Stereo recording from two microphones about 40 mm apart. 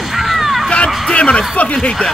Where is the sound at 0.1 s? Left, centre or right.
Centre.